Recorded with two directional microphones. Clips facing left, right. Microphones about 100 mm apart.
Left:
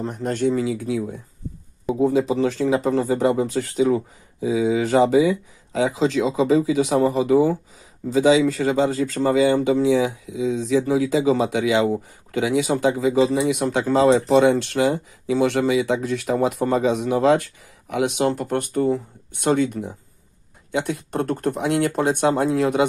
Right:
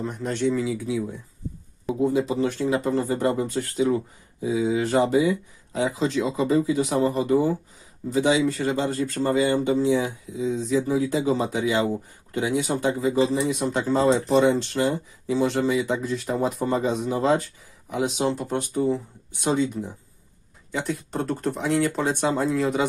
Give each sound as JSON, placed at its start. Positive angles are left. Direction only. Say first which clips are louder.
{"t": 0.1, "sound": "speech", "louder": "left 4 dB", "side_deg": 45}
{"t": 2.0, "sound": "speech", "louder": "left 3 dB", "side_deg": 90}
{"t": 8.9, "sound": "speech", "louder": "left 4 dB", "side_deg": 90}